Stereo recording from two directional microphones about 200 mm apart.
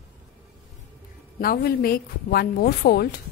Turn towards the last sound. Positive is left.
turn(degrees=50)  # may be behind; listen again after turning